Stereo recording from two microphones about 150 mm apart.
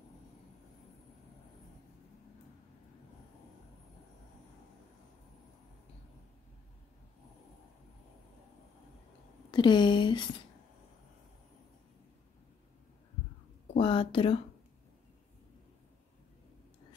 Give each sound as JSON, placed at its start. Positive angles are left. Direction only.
{"t": 9.5, "sound": "speech", "side_deg": 30}
{"t": 13.7, "sound": "speech", "side_deg": 35}